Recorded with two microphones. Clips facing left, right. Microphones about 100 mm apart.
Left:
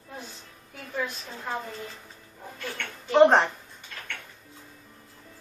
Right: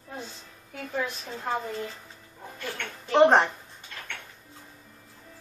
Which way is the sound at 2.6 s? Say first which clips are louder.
Right 1 dB; centre (ahead or behind).